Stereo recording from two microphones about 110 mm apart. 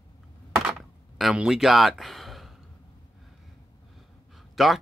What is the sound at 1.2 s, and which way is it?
Speech, 5° right (ahead or behind).